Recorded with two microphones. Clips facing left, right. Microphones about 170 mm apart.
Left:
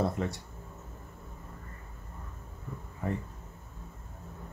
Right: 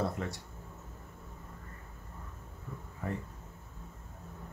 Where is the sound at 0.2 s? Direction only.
25° left (ahead or behind).